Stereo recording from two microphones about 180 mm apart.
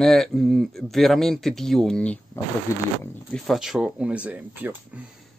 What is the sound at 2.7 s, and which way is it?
Speech, 15° left (ahead or behind).